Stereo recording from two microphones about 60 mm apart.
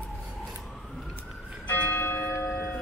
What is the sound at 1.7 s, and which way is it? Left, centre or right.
Church bell, left.